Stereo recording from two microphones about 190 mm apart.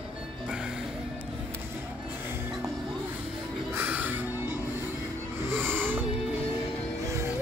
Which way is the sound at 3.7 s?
10° right (ahead or behind).